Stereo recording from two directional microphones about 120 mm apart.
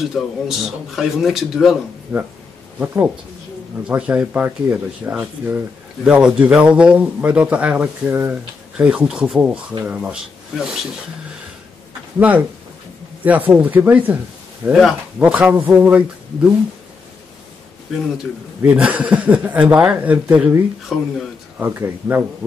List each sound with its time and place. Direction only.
0.0 s speech: centre (ahead or behind)
12.2 s speech: 15° right (ahead or behind)
18.6 s speech: 10° right (ahead or behind)
20.9 s speech: 5° right (ahead or behind)
21.5 s speech: 20° right (ahead or behind)